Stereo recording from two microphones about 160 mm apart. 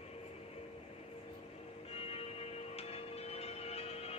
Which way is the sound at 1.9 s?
40° left (ahead or behind).